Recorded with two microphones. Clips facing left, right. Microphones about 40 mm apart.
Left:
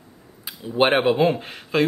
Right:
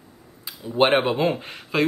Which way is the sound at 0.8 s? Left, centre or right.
Centre.